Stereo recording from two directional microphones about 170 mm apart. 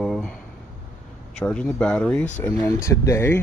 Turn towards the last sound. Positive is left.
turn(degrees=15)  # may be behind; listen again after turning